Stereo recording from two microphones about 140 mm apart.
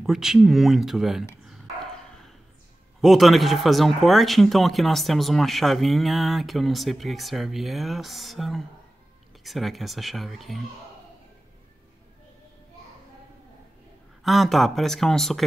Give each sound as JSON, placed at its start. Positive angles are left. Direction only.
{"t": 0.0, "sound": "speech", "side_deg": -5}
{"t": 3.0, "sound": "speech", "side_deg": 0}
{"t": 14.2, "sound": "speech", "side_deg": 0}